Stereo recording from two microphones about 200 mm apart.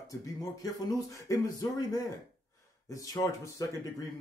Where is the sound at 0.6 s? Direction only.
20° left (ahead or behind).